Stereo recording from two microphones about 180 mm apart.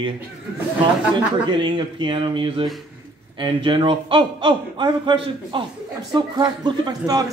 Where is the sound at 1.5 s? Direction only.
25° right (ahead or behind).